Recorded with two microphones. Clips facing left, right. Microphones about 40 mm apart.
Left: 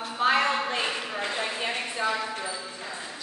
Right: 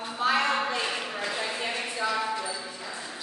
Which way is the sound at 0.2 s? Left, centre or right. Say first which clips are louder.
Left 2 dB; left.